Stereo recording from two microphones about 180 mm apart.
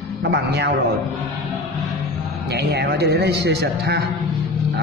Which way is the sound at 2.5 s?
65° right (ahead or behind).